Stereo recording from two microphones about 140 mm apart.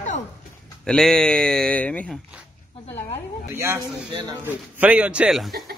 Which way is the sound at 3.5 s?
15° right (ahead or behind).